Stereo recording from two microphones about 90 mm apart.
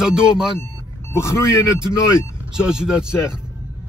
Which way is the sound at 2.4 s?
10° right (ahead or behind).